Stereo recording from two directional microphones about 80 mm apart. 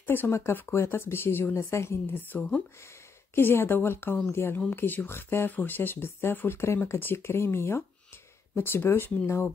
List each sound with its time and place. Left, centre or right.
0.0 s speech: left
2.3 s speech: centre
3.3 s speech: left